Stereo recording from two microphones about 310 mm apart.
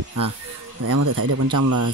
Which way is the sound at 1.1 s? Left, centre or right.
Right.